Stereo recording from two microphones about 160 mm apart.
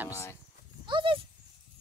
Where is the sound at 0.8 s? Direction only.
30° right (ahead or behind).